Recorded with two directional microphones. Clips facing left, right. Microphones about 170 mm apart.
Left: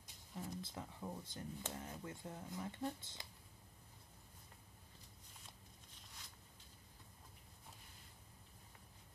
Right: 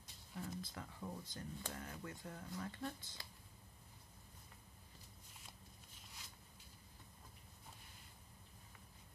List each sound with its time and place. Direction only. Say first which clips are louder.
0.0 s speech: even; 15° left (ahead or behind)